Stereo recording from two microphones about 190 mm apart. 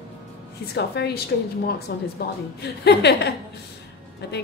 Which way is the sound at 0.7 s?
60° left (ahead or behind).